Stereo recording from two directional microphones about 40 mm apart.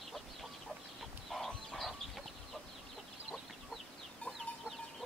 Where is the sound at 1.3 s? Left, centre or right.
Centre.